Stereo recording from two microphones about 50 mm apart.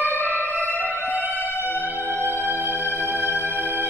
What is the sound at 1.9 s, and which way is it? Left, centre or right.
Music, right.